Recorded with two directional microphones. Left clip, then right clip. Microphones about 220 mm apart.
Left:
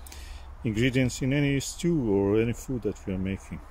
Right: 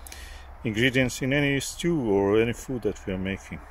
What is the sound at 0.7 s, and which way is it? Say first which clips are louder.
Speech: right 3 dB; 5° left (ahead or behind).